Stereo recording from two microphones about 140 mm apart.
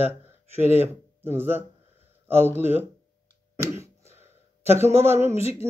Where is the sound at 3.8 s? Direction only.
20° right (ahead or behind).